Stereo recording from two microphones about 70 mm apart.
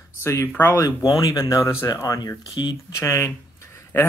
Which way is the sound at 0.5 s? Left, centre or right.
Left.